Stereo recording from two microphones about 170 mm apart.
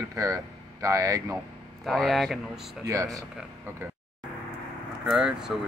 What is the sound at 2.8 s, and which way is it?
Speech, 20° right (ahead or behind).